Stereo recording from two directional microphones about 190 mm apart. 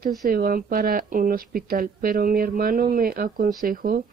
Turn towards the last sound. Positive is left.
turn(degrees=-50)  # may be behind; listen again after turning